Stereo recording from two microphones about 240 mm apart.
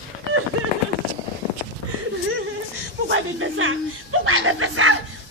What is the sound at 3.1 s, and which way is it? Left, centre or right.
Chuckle, right.